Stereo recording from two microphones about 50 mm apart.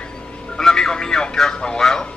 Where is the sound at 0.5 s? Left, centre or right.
Centre.